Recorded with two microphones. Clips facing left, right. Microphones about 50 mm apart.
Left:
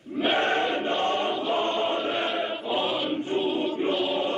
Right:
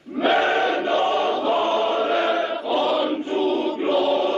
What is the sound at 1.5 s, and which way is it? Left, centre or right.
Choir, right.